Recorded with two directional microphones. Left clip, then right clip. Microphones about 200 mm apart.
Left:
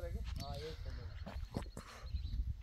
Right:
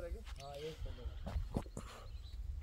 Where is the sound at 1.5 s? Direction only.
25° right (ahead or behind).